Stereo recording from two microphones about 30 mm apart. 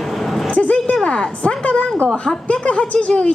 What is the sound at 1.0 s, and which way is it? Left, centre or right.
Speech, left.